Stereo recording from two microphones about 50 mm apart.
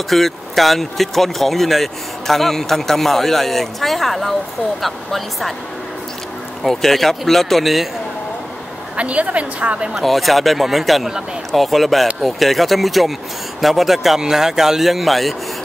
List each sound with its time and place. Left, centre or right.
0.1 s speech: centre
6.6 s speech: centre
8.9 s a woman's voice: right
9.9 s speech: centre